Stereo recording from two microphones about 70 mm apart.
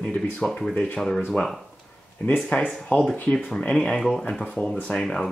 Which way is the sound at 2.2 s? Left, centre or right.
Left.